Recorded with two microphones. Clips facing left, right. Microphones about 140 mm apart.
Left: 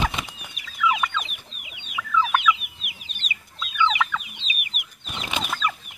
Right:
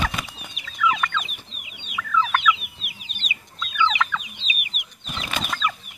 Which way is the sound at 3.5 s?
5° left (ahead or behind).